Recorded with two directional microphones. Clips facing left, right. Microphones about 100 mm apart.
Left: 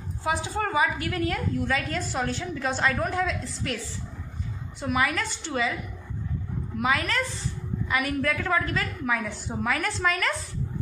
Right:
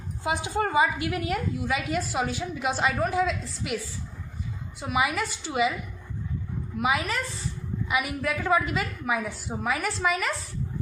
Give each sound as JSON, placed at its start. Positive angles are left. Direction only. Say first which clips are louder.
{"t": 0.2, "sound": "a woman's voice", "louder": "right 1 dB", "side_deg": -15}
{"t": 6.8, "sound": "a woman's voice", "louder": "even", "side_deg": -10}